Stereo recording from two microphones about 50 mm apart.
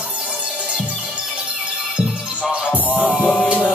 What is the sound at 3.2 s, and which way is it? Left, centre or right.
Music, left.